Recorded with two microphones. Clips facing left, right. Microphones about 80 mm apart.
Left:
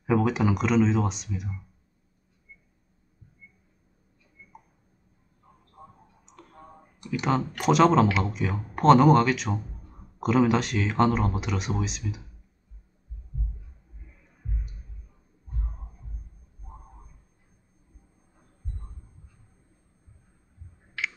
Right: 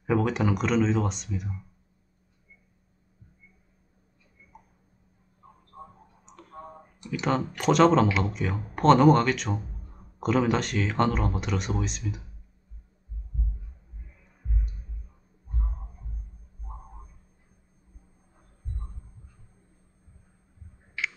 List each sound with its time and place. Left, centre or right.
0.0 s speech: centre
7.1 s speech: centre